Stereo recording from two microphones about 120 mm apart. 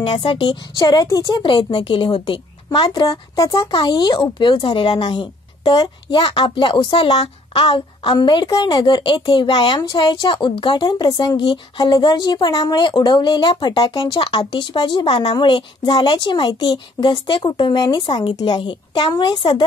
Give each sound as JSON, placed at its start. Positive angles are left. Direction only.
{"t": 0.0, "sound": "speech", "side_deg": 45}